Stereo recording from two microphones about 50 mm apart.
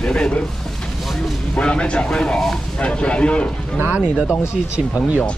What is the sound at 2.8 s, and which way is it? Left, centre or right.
Speech, left.